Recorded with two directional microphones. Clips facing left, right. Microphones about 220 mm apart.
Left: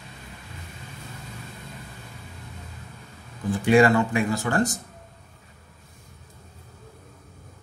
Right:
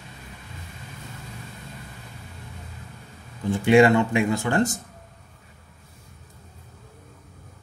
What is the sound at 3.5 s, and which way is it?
Speech, 25° right (ahead or behind).